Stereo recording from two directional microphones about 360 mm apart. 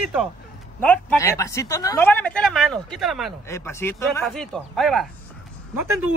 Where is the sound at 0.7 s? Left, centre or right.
Centre.